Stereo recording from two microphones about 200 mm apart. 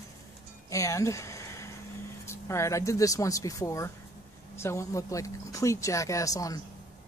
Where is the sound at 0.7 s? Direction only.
15° left (ahead or behind).